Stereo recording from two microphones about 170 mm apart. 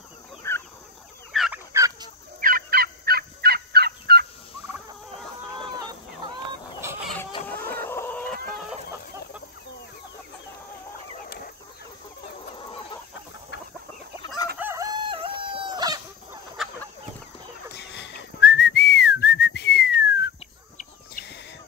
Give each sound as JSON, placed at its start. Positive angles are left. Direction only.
{"t": 0.4, "sound": "chicken", "side_deg": 15}
{"t": 1.3, "sound": "turkey", "side_deg": 0}
{"t": 1.7, "sound": "fowl", "side_deg": -20}
{"t": 2.4, "sound": "fowl", "side_deg": -60}
{"t": 6.8, "sound": "chicken", "side_deg": -15}
{"t": 7.4, "sound": "chicken", "side_deg": 10}
{"t": 11.2, "sound": "chicken", "side_deg": 60}
{"t": 12.5, "sound": "chicken", "side_deg": 25}
{"t": 14.2, "sound": "chicken", "side_deg": 25}
{"t": 14.6, "sound": "chicken", "side_deg": -20}
{"t": 16.6, "sound": "chicken", "side_deg": 0}
{"t": 17.7, "sound": "whistling", "side_deg": 90}
{"t": 20.7, "sound": "chicken", "side_deg": 60}